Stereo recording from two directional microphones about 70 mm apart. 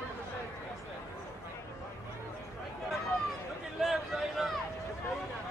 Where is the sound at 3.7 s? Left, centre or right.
Centre.